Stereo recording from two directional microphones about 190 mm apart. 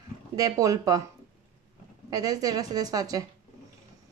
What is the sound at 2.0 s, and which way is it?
Speech, 20° right (ahead or behind).